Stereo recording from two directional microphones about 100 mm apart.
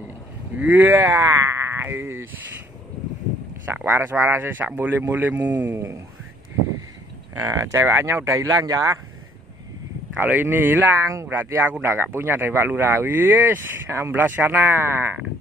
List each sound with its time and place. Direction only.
0.6 s speech: 15° right (ahead or behind)
3.6 s speech: 25° right (ahead or behind)
7.3 s speech: 30° right (ahead or behind)
10.1 s speech: 20° right (ahead or behind)